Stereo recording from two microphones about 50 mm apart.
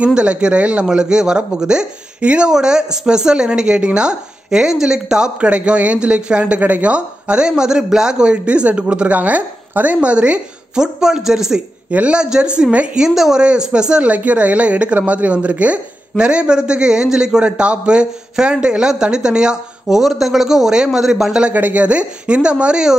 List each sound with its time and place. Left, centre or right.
0.0 s speech: right
10.7 s speech: centre
11.9 s speech: right
13.0 s speech: centre
14.1 s speech: right; by 21.5 s centre
21.5 s speech: right